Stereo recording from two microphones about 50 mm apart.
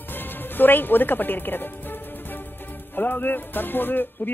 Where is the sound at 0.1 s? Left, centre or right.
Left.